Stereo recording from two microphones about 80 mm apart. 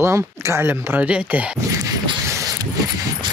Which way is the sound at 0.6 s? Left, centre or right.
Right.